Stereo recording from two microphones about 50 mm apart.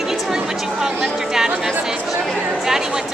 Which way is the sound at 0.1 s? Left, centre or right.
Centre.